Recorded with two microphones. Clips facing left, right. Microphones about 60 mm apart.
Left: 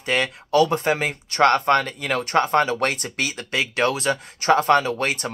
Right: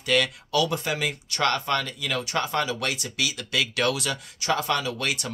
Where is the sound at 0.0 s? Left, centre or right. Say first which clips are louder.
Left 1 dB; left.